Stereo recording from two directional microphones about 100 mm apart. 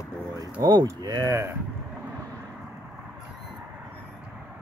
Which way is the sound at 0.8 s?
40° right (ahead or behind).